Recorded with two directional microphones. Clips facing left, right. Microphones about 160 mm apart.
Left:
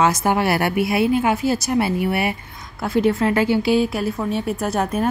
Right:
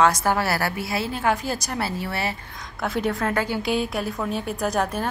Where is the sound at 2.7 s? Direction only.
5° left (ahead or behind).